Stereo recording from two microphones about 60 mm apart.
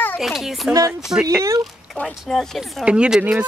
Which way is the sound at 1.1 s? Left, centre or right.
Right.